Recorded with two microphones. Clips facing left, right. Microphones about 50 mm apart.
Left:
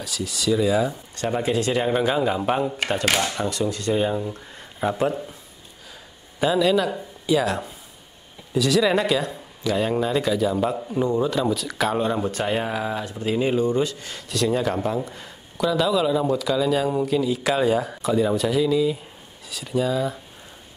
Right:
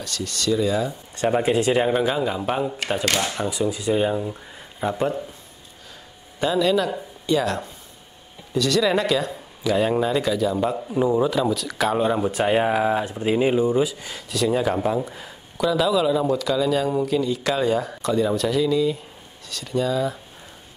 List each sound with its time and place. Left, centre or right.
0.0 s speech: centre
1.1 s speech: centre
1.9 s speech: centre
3.4 s speech: centre
6.4 s speech: centre